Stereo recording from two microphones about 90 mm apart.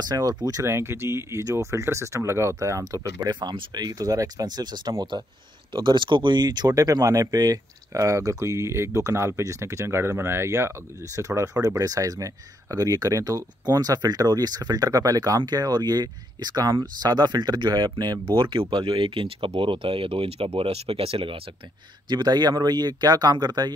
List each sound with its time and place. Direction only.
0.0 s speech: 45° right (ahead or behind)
5.7 s speech: 60° right (ahead or behind); by 21.4 s 90° right
22.1 s speech: 50° right (ahead or behind)